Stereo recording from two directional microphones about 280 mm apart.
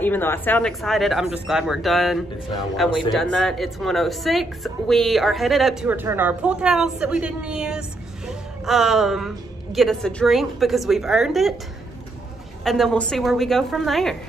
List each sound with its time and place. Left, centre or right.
0.0 s speech: centre
12.6 s speech: centre